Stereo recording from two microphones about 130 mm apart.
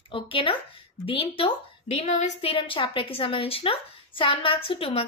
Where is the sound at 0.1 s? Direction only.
40° left (ahead or behind); by 2.3 s 65° left (ahead or behind).